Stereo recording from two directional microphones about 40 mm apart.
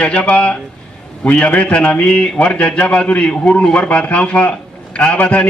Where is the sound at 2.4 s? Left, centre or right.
Left.